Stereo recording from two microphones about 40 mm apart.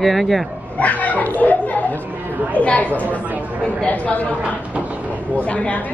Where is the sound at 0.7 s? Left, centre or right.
Left.